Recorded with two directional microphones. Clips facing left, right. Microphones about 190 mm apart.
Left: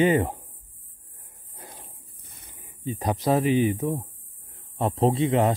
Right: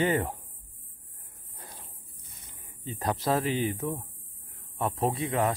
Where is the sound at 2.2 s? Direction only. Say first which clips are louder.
Left 4 dB; 60° left (ahead or behind).